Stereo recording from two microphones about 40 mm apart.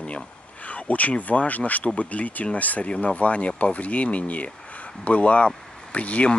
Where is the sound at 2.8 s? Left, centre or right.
Left.